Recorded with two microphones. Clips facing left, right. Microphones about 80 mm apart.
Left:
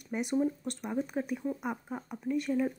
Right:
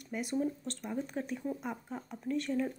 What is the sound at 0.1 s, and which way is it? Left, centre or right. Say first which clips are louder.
A woman's voice: left 4 dB; left.